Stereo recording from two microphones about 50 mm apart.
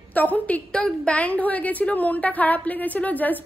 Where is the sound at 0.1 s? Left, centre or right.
Left.